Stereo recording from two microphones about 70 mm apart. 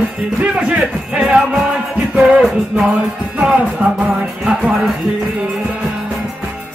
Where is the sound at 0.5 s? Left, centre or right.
Centre.